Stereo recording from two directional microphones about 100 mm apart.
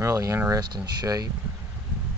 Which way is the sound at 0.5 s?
45° right (ahead or behind).